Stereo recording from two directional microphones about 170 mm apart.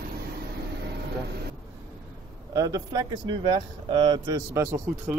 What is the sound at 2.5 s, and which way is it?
Speech, 20° right (ahead or behind).